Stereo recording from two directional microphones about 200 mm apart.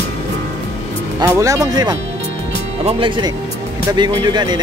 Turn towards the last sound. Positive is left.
turn(degrees=-20)  # may be behind; listen again after turning